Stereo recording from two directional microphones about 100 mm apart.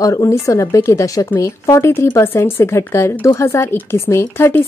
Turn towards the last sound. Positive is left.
turn(degrees=25)  # may be behind; listen again after turning